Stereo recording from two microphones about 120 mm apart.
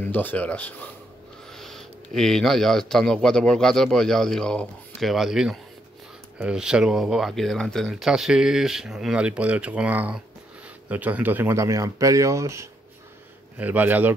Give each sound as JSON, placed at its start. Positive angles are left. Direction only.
{"t": 0.0, "sound": "speech", "side_deg": 15}
{"t": 13.6, "sound": "a man's voice", "side_deg": -15}